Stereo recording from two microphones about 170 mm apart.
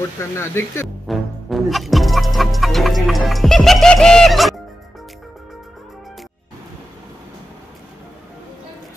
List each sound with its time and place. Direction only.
0.2 s speech: 15° left (ahead or behind)
1.0 s music: centre (ahead or behind)